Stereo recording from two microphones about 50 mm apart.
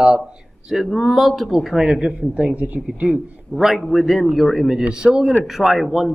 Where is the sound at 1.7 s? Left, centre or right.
Centre; by 3.0 s right.